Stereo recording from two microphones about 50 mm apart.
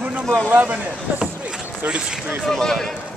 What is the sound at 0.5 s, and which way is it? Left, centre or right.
Speech, right.